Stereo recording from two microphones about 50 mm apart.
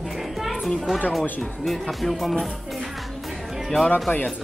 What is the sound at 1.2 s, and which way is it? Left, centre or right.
Speech, left.